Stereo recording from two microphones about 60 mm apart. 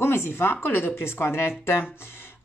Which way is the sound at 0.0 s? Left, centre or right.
Left.